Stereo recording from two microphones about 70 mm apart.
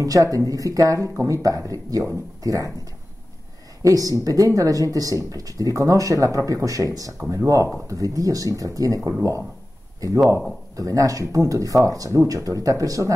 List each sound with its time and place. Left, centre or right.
0.0 s speech: right
3.8 s speech: right
7.2 s speech: right